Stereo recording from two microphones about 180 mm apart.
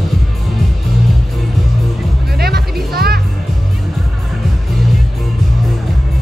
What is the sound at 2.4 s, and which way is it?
Music, 60° right (ahead or behind).